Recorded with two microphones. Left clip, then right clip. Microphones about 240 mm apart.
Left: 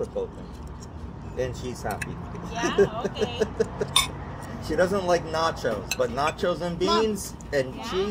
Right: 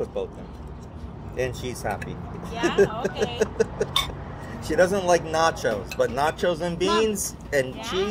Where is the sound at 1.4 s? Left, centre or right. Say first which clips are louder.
Right 2 dB; right.